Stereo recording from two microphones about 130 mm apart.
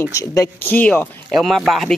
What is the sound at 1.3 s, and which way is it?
Speech, centre (ahead or behind).